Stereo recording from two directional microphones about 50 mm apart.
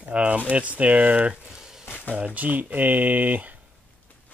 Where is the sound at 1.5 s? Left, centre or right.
Centre.